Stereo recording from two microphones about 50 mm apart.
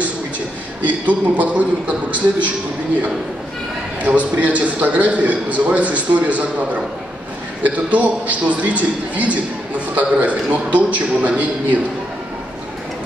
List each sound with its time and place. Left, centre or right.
0.8 s a man's voice: right
4.0 s a man's voice: right